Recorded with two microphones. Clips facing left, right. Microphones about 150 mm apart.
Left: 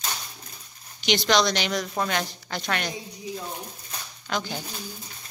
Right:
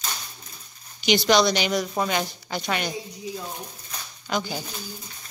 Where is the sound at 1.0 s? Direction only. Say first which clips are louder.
Right 3 dB; 5° right (ahead or behind).